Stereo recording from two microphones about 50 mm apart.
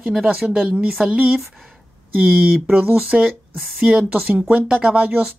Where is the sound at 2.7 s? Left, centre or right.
Right.